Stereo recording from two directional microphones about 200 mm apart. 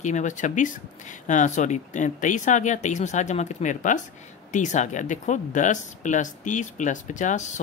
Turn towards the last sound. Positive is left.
turn(degrees=35)  # may be behind; listen again after turning